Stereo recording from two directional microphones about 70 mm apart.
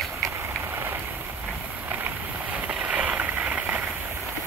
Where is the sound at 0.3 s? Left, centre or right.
Right.